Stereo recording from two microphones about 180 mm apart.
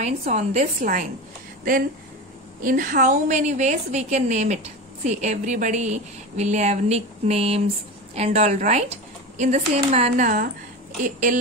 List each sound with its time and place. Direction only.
0.0 s a woman's voice: 40° right (ahead or behind)